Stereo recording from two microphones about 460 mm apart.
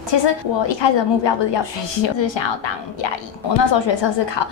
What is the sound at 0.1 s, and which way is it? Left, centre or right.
A woman's voice, left.